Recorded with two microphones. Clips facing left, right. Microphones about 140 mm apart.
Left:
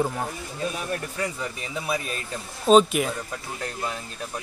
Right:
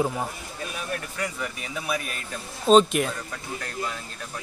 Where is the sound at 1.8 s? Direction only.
25° left (ahead or behind).